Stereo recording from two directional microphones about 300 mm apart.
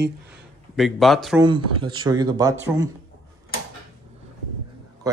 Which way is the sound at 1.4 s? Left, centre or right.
Centre.